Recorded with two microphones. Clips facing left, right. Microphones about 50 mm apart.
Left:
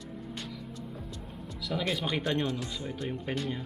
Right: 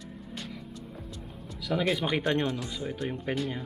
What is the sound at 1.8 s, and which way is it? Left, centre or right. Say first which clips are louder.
Speech: right 4 dB; centre.